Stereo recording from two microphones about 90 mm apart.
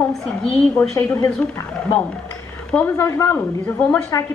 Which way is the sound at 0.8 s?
30° left (ahead or behind).